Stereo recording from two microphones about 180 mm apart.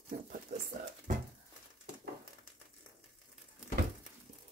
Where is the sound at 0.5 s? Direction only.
45° right (ahead or behind).